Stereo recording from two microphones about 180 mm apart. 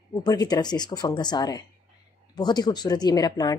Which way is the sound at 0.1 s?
20° left (ahead or behind).